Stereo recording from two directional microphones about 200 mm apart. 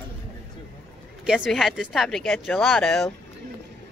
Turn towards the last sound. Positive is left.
turn(degrees=0)  # may be behind; listen again after turning